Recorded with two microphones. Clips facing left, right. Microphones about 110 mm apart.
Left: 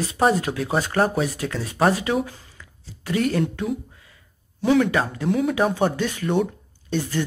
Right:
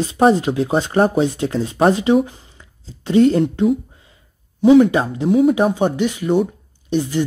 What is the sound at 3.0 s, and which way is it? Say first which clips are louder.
Speech: right 9 dB; 25° right (ahead or behind).